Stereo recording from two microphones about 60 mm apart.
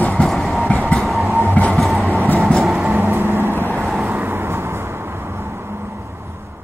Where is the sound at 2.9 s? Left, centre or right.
Right.